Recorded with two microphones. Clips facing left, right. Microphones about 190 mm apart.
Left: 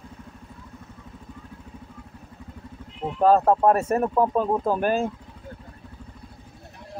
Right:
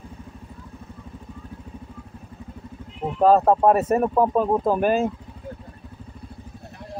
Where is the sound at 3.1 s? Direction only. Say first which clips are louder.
Right 2 dB; 5° right (ahead or behind).